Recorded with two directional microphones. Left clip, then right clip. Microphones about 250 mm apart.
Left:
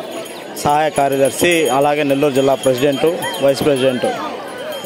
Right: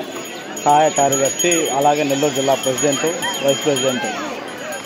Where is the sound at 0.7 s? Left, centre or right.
Left.